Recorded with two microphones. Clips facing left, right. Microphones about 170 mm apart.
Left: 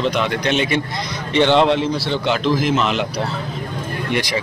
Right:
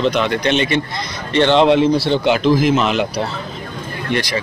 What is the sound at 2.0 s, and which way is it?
A man's voice, 10° right (ahead or behind).